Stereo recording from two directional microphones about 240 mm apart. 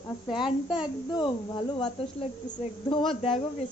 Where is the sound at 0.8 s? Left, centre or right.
Centre.